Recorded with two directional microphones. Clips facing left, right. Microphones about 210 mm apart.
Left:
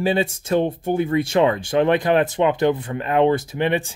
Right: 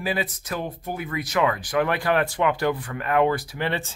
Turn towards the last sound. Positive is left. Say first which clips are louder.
# left 6 dB
turn(degrees=15)  # may be behind; listen again after turning